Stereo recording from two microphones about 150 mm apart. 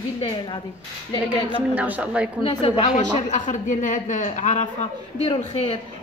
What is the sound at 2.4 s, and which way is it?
Speech, 40° left (ahead or behind).